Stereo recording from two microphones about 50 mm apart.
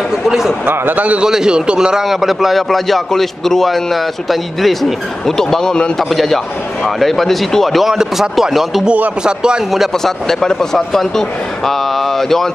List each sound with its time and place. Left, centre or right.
0.2 s a man's voice: centre
0.7 s a man's voice: right
1.2 s speech: centre
2.0 s a man's voice: centre
5.4 s a man's voice: centre
7.9 s speech: centre
9.2 s speech: centre
9.7 s a man's voice: centre